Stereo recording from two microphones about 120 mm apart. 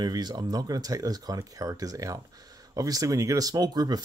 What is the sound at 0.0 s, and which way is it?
Speech, 35° right (ahead or behind).